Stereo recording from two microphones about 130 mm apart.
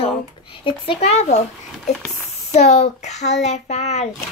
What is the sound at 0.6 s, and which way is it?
Speech, 45° left (ahead or behind).